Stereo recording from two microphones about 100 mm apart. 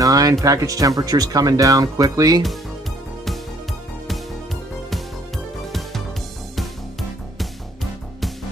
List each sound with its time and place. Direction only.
0.0 s speech: 35° right (ahead or behind)
5.6 s music: centre (ahead or behind)